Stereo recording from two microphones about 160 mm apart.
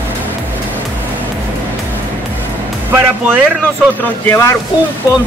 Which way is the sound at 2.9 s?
10° right (ahead or behind).